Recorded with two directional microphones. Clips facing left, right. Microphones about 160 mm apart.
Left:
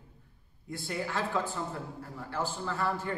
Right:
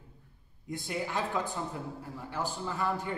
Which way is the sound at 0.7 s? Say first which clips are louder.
Even; 20° right (ahead or behind).